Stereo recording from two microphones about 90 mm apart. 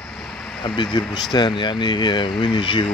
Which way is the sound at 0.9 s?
55° left (ahead or behind).